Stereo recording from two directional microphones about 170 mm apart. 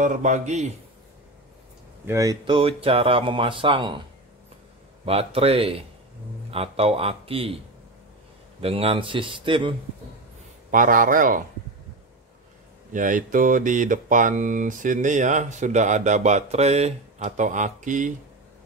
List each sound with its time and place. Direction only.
0.0 s speech: 45° right (ahead or behind)
2.0 s speech: 20° right (ahead or behind)
5.0 s a man's voice: 35° right (ahead or behind)
10.7 s speech: 55° right (ahead or behind)
12.9 s speech: 50° right (ahead or behind)